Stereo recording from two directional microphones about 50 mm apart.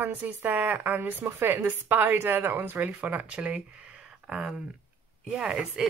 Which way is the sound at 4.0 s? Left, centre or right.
Centre.